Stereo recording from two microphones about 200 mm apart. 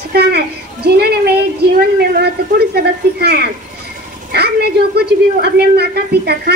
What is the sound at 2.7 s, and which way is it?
A woman's voice, 55° right (ahead or behind).